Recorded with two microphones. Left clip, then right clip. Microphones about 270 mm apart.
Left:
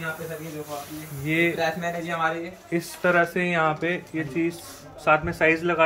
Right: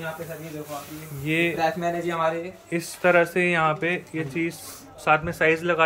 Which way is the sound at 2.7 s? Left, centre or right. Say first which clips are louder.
Right 2 dB; centre.